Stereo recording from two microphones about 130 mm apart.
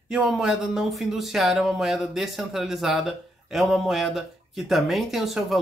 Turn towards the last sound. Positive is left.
turn(degrees=0)  # may be behind; listen again after turning